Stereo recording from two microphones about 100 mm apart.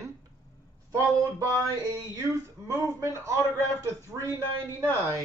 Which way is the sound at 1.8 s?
30° right (ahead or behind).